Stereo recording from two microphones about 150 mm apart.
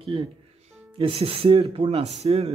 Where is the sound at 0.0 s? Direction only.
35° right (ahead or behind).